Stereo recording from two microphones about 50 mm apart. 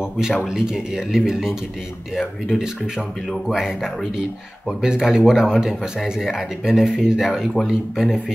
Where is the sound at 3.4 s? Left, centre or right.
Centre.